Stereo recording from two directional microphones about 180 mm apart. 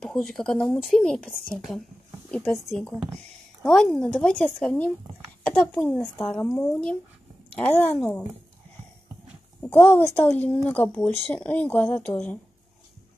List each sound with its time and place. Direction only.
0.0 s speech: centre (ahead or behind)
9.6 s speech: 10° left (ahead or behind)